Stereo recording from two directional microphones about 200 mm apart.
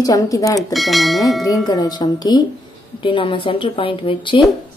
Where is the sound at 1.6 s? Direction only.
20° left (ahead or behind).